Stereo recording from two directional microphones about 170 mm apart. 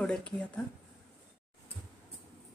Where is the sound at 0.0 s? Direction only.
5° left (ahead or behind).